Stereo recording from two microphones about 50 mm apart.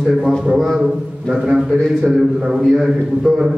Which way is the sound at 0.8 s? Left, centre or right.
Centre.